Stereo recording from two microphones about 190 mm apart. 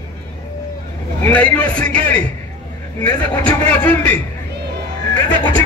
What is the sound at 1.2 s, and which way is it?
A man's voice, 10° left (ahead or behind).